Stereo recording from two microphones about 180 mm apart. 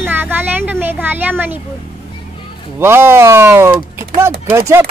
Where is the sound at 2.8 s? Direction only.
10° right (ahead or behind).